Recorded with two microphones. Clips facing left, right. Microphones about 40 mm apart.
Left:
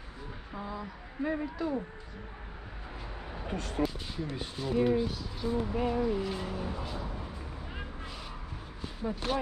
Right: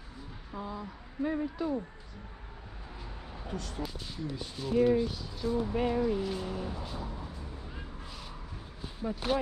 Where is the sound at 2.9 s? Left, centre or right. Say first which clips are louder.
Left 4 dB; left.